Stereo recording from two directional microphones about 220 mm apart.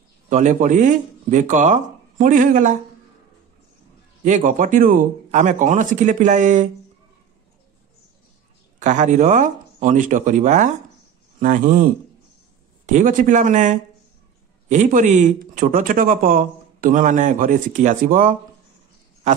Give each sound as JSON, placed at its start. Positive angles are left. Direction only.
{"t": 0.3, "sound": "speech", "side_deg": -35}
{"t": 4.2, "sound": "speech", "side_deg": -35}
{"t": 8.7, "sound": "speech", "side_deg": -35}